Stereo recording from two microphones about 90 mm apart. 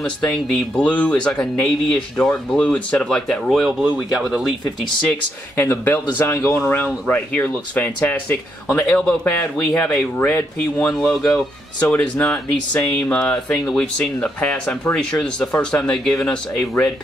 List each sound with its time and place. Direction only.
0.5 s speech: 10° left (ahead or behind); by 4.5 s 5° right (ahead or behind)
5.6 s speech: 20° left (ahead or behind)